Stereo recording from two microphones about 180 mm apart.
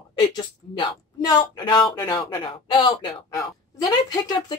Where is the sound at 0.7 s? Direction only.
25° left (ahead or behind).